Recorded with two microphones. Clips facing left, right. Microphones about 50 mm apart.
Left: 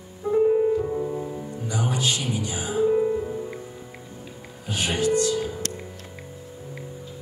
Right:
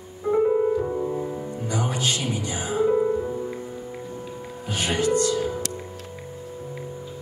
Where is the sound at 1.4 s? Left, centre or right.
Right.